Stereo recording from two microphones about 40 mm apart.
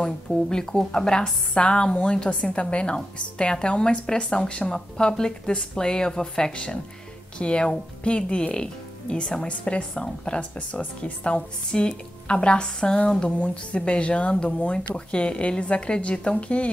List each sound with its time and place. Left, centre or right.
0.0 s a woman's voice: centre